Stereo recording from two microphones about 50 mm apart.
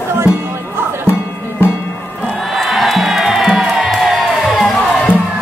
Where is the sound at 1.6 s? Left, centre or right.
Left.